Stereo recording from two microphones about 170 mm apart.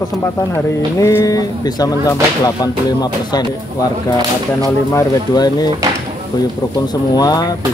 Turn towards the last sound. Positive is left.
turn(degrees=25)  # may be behind; listen again after turning